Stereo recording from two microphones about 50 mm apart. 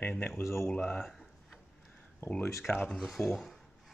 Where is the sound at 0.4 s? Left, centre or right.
Left.